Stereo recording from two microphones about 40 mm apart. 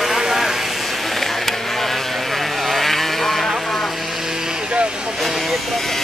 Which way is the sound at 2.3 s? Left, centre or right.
Centre.